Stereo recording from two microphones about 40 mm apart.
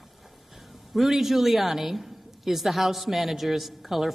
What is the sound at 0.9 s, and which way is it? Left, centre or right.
A woman's voice, centre.